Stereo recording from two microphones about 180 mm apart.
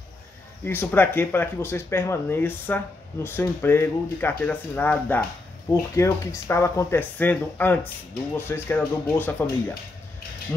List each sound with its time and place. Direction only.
0.7 s speech: 10° left (ahead or behind)